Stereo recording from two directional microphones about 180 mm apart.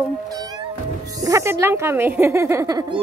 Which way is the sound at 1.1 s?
20° right (ahead or behind).